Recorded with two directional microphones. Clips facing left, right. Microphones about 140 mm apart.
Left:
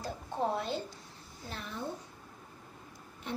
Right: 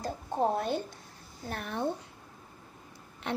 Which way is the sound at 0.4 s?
50° right (ahead or behind).